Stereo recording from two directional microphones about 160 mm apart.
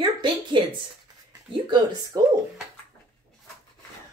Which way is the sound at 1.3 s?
25° right (ahead or behind).